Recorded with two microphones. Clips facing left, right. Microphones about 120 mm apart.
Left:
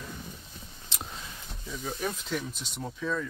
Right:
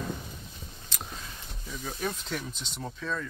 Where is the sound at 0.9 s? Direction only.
25° left (ahead or behind).